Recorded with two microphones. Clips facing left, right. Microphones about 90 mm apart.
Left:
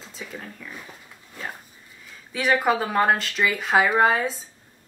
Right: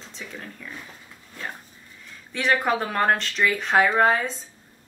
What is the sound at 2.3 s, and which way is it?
Speech, 5° left (ahead or behind).